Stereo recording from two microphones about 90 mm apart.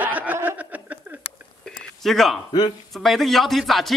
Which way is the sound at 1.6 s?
5° left (ahead or behind).